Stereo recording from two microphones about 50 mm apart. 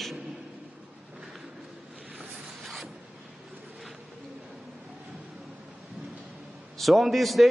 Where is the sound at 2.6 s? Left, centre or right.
Centre.